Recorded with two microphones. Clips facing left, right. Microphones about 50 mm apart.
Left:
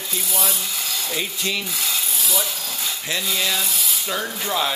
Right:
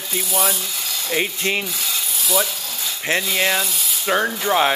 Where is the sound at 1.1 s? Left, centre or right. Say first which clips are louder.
Right 6 dB; right.